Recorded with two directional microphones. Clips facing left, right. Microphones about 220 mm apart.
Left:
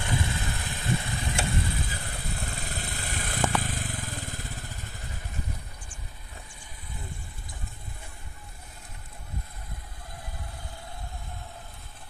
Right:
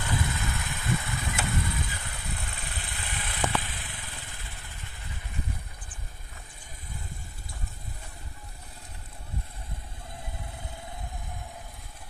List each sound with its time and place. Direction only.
0.1 s vehicle: 30° left (ahead or behind)